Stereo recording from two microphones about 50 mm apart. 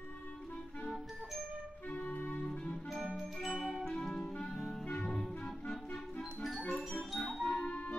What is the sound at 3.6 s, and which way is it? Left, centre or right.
Music, centre.